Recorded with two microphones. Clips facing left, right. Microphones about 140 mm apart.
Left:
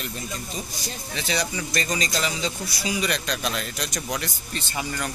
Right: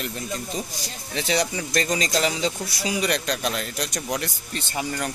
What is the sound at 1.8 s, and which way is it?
Speech, 90° right.